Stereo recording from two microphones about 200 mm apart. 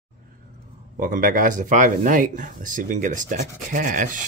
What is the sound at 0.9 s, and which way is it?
Speech, 45° right (ahead or behind).